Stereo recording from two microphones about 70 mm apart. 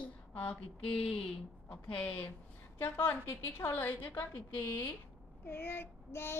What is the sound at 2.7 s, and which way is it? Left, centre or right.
A woman's voice, left.